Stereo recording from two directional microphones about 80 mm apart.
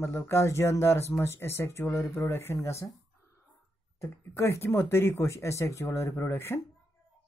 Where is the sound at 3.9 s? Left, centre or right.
Left.